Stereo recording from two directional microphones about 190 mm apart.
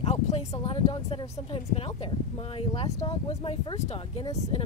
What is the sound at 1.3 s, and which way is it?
Speech, 30° left (ahead or behind).